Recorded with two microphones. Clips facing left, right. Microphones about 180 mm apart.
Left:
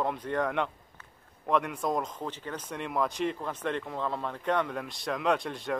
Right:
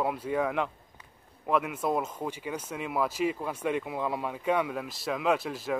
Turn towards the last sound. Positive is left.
turn(degrees=-5)  # may be behind; listen again after turning